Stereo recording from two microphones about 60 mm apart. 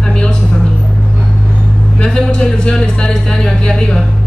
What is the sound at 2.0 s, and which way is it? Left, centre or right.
A woman's voice, centre.